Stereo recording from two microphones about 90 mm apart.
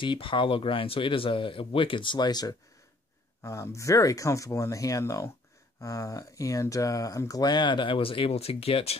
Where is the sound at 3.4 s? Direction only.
35° left (ahead or behind).